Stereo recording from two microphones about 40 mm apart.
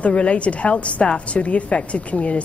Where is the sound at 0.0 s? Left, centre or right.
Left.